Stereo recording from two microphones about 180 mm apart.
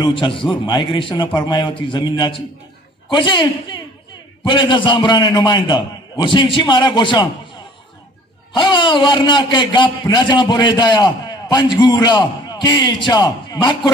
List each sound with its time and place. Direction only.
0.0 s a man's voice: 30° left (ahead or behind)
8.5 s a man's voice: 25° left (ahead or behind)